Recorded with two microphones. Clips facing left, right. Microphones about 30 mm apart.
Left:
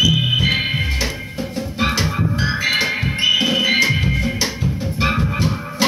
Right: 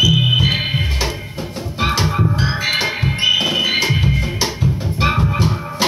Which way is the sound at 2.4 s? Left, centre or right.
Right.